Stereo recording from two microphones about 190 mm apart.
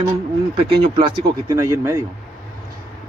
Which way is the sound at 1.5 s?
15° right (ahead or behind).